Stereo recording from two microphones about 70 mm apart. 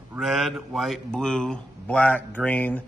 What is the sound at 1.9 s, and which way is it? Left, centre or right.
Speech, left.